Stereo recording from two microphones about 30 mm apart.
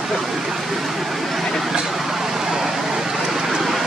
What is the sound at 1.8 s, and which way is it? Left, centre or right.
Vehicle, centre.